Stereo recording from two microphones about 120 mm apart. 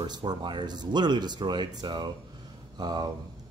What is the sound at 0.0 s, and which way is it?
Speech, 35° right (ahead or behind).